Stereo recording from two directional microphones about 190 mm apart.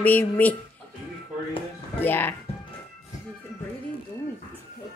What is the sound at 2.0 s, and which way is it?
Speech, 10° left (ahead or behind).